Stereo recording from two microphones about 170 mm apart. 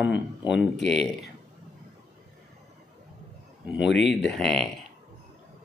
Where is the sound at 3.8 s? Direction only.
90° left.